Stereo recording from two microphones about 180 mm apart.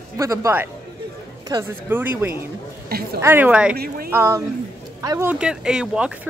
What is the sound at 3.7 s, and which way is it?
Speech, 60° right (ahead or behind).